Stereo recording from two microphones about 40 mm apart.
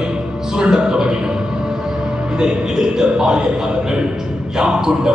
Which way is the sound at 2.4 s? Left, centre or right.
Centre.